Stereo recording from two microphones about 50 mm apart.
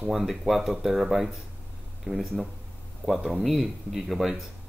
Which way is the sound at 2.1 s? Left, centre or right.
Right.